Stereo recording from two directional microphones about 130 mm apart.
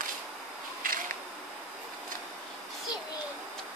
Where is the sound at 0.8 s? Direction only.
90° right.